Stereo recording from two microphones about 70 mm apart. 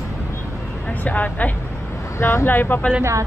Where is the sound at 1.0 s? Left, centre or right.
Left.